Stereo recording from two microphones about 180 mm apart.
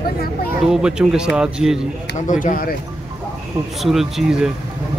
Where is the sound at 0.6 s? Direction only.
5° right (ahead or behind).